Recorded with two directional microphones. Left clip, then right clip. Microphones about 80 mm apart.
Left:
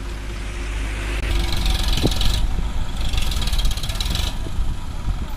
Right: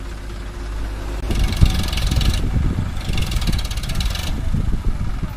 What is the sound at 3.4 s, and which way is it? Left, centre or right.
Vehicle, left.